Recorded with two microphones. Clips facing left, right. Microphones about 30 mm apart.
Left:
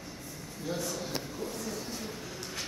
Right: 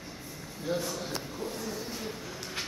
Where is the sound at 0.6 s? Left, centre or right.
Centre.